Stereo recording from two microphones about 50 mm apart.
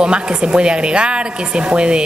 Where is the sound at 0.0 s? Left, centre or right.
Centre.